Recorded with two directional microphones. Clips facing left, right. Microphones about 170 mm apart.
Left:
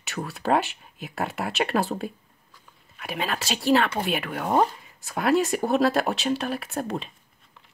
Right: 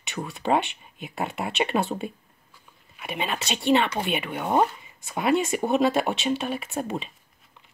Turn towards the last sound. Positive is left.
turn(degrees=0)  # may be behind; listen again after turning